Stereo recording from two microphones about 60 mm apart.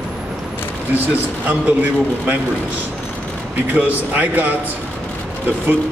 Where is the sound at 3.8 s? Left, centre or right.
Right.